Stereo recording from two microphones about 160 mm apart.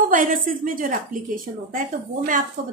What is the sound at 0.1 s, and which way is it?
A woman's voice, 60° right (ahead or behind).